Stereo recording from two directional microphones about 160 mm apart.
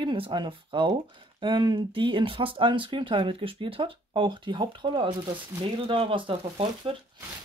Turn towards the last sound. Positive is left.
turn(degrees=-35)  # may be behind; listen again after turning